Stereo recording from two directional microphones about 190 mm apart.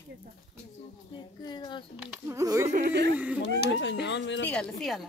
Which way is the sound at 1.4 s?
20° left (ahead or behind).